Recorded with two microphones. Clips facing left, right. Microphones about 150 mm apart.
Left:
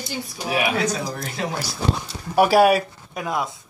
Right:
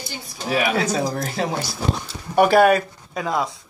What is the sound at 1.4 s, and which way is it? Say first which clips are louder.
Speech: right 3 dB; 35° right (ahead or behind).